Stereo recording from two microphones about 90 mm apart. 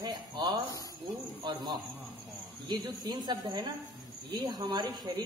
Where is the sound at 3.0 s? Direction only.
45° right (ahead or behind).